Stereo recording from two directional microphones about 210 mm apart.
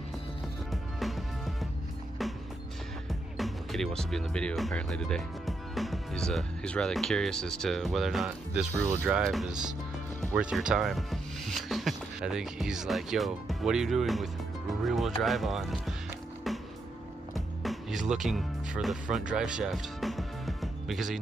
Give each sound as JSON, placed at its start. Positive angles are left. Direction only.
{"t": 0.7, "sound": "music", "side_deg": 0}
{"t": 3.1, "sound": "speech", "side_deg": 0}
{"t": 16.5, "sound": "music", "side_deg": 0}